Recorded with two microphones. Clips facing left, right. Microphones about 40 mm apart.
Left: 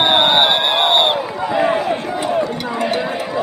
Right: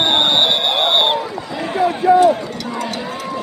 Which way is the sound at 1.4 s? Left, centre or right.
Left.